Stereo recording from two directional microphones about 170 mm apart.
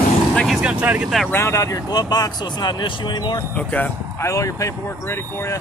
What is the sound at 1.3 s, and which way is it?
Vehicle, 15° left (ahead or behind).